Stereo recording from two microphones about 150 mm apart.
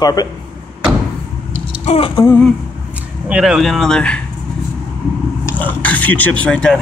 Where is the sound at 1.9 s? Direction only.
50° left (ahead or behind).